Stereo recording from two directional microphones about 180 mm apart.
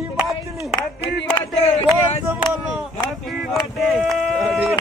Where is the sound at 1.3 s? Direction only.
35° left (ahead or behind).